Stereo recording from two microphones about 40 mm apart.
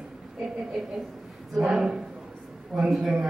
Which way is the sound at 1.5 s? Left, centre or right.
Centre.